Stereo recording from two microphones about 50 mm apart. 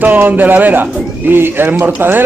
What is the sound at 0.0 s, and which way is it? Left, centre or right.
A man's voice, right.